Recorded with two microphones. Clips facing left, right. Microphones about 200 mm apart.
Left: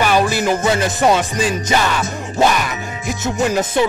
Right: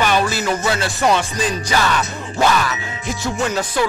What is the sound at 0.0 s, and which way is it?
Music, 10° left (ahead or behind).